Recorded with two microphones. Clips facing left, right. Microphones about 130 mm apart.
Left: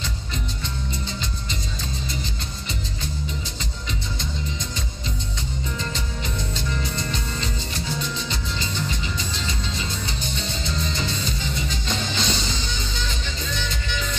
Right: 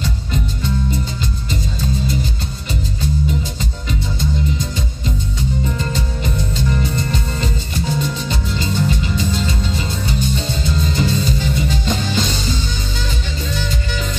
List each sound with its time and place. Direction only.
5.8 s music: 50° right (ahead or behind)
13.5 s music: 45° right (ahead or behind)